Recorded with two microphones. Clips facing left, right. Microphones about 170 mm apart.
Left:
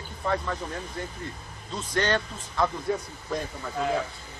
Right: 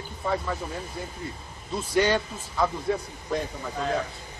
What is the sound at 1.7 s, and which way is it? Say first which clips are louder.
Speech: right 3 dB; 10° right (ahead or behind).